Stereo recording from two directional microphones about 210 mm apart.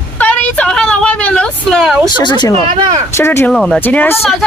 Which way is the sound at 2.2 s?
20° left (ahead or behind).